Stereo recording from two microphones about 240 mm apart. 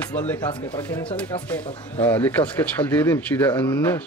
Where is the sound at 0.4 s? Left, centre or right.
Centre.